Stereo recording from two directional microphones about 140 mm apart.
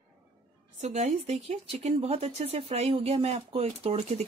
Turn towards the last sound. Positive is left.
turn(degrees=-45)  # may be behind; listen again after turning